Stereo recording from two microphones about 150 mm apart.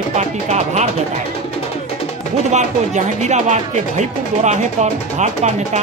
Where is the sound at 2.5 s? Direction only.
50° right (ahead or behind).